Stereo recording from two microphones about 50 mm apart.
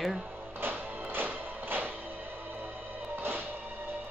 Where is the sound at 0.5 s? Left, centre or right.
Right.